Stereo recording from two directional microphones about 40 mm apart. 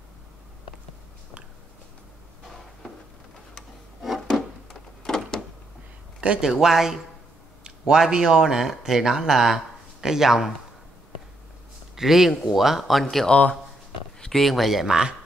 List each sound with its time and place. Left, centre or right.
5.0 s door: centre
6.4 s a man's voice: centre
11.9 s speech: centre
13.3 s speech: left
14.2 s speech: centre